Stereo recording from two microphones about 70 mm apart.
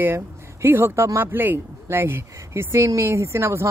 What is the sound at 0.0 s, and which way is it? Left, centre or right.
Speech, right.